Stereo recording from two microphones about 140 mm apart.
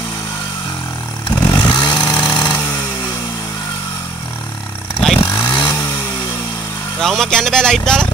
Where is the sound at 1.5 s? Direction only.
30° left (ahead or behind).